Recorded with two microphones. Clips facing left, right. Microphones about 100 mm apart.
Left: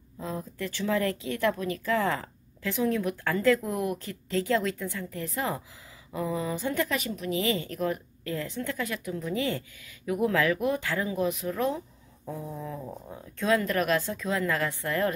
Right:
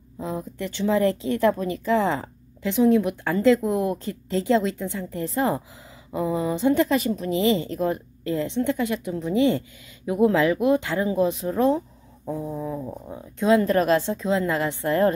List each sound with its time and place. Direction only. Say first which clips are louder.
0.2 s speech: right 4 dB; 20° right (ahead or behind)
12.3 s speech: right 7 dB; 20° right (ahead or behind)
13.6 s speech: right 7 dB; 30° right (ahead or behind)